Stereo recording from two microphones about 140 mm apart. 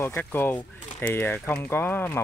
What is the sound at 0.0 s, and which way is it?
Speech, 15° left (ahead or behind).